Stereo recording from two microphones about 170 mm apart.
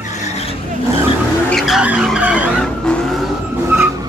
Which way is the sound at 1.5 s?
Centre (ahead or behind).